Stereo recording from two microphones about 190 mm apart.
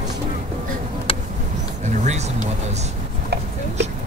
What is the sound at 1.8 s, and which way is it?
Vehicle, 35° right (ahead or behind).